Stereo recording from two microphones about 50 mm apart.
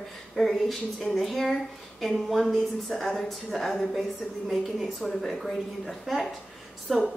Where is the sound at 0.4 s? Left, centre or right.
Centre.